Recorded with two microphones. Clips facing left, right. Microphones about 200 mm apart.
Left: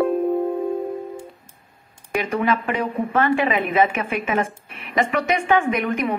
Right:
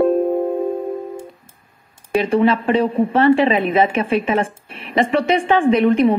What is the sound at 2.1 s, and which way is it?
A woman's voice, 30° right (ahead or behind).